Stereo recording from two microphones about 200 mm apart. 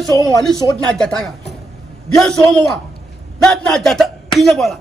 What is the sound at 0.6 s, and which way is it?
Speech, 15° right (ahead or behind).